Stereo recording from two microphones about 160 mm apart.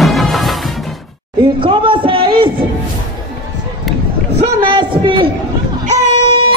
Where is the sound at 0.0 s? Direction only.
Centre (ahead or behind).